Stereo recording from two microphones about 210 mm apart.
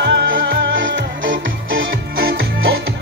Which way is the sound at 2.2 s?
45° right (ahead or behind).